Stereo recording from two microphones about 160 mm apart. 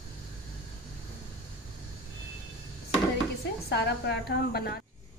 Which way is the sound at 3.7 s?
90° left.